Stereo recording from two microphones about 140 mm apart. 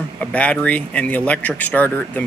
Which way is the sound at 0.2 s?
10° left (ahead or behind).